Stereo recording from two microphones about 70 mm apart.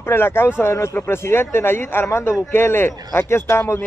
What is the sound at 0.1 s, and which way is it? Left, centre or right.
A man's voice, left.